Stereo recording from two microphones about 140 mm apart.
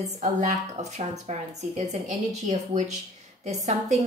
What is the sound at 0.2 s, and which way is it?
A woman's voice, 55° right (ahead or behind).